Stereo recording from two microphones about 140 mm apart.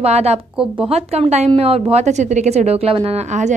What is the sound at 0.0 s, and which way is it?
A woman's voice, 50° right (ahead or behind).